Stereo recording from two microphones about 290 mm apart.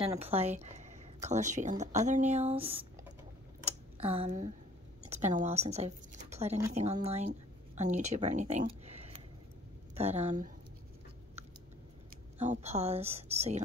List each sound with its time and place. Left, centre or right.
0.0 s speech: centre
3.6 s a sound: centre
5.0 s speech: right
12.4 s speech: right